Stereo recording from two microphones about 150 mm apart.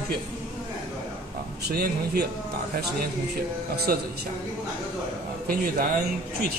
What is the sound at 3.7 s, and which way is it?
Speech, 90° right.